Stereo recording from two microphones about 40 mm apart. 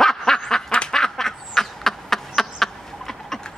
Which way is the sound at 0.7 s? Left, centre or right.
Left.